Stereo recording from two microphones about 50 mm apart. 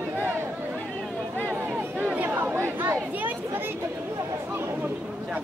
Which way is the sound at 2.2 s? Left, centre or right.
Right.